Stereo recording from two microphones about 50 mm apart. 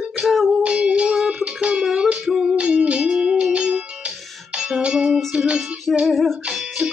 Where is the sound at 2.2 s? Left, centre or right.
Centre.